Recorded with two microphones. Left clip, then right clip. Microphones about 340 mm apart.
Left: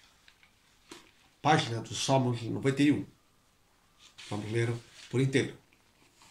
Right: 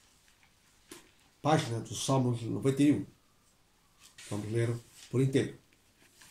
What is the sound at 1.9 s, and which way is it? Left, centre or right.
Speech, left.